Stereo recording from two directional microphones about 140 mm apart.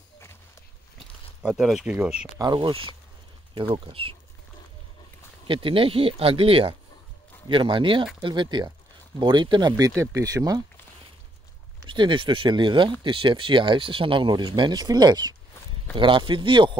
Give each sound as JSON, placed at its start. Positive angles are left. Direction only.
{"t": 1.4, "sound": "speech", "side_deg": -5}
{"t": 2.3, "sound": "speech", "side_deg": -30}
{"t": 5.5, "sound": "speech", "side_deg": -40}
{"t": 11.8, "sound": "speech", "side_deg": -35}